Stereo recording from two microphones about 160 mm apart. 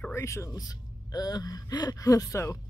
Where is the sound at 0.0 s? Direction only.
15° left (ahead or behind).